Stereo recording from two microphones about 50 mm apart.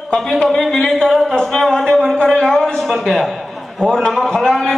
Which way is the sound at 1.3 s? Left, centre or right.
Centre.